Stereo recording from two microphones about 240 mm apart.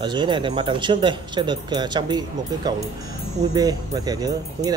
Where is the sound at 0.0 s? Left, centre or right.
Centre.